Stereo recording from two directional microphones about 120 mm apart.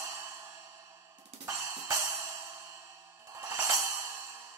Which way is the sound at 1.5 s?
25° right (ahead or behind).